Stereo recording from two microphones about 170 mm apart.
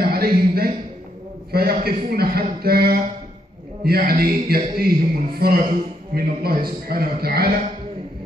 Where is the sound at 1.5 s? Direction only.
65° right (ahead or behind).